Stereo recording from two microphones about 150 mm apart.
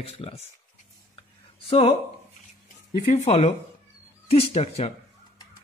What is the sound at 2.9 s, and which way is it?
Speech, 45° left (ahead or behind).